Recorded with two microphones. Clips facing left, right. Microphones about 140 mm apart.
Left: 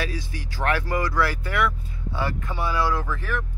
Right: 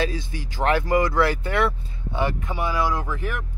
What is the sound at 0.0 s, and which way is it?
Speech, 25° right (ahead or behind).